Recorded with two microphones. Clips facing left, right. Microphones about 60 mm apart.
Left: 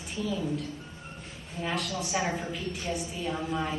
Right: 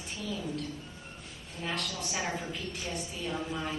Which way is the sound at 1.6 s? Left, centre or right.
Centre.